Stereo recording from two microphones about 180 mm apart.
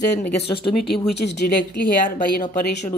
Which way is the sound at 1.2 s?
70° left (ahead or behind).